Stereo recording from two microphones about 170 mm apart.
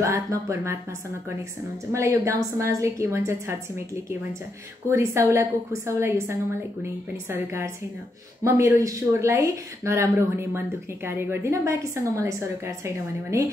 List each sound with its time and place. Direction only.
0.0 s a woman's voice: 15° right (ahead or behind)
1.9 s a woman's voice: 15° right (ahead or behind)
4.8 s a woman's voice: 15° right (ahead or behind)